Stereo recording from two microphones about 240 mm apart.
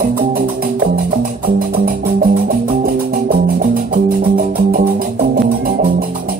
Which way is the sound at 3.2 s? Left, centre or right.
Right.